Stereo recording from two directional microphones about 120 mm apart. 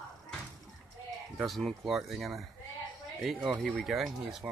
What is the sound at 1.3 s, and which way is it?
Speech, centre (ahead or behind).